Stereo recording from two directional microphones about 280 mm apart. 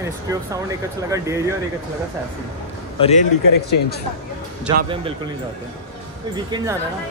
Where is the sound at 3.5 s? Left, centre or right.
Left.